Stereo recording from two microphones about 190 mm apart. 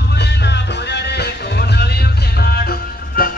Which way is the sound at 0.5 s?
60° left (ahead or behind).